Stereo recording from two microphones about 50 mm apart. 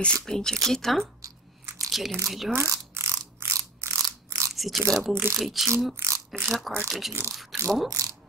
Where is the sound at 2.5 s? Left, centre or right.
Right.